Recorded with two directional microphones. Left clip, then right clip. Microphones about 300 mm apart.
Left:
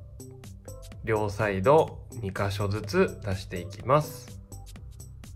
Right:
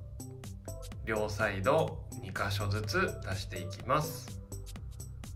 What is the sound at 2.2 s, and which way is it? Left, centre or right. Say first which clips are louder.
Speech: left 5 dB; left.